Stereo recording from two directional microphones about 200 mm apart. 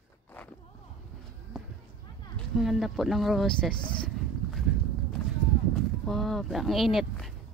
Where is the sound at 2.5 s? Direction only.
Centre (ahead or behind).